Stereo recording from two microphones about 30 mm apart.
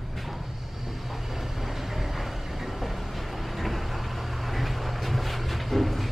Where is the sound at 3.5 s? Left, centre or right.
Centre.